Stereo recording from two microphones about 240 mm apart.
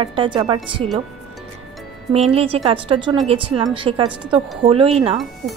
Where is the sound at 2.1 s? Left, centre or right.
Right.